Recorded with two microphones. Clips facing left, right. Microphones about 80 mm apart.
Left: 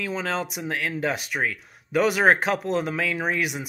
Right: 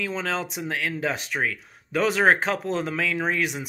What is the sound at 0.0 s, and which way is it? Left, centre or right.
Speech, centre.